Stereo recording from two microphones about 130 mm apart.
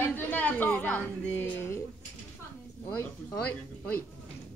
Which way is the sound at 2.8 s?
25° left (ahead or behind).